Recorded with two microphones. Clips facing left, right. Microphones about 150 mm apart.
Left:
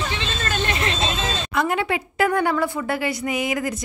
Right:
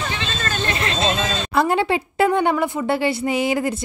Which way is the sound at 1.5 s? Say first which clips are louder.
Right 4 dB; 30° right (ahead or behind).